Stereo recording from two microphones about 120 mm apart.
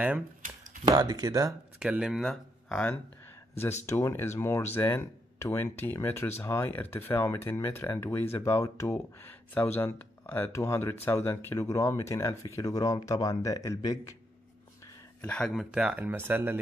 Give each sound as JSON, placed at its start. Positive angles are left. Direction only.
{"t": 1.0, "sound": "speech", "side_deg": -30}
{"t": 1.8, "sound": "speech", "side_deg": -5}
{"t": 3.8, "sound": "speech", "side_deg": 25}
{"t": 15.2, "sound": "speech", "side_deg": 10}
{"t": 15.7, "sound": "speech", "side_deg": -10}